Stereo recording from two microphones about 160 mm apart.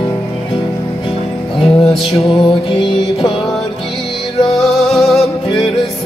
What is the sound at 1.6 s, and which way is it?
Music, 35° left (ahead or behind).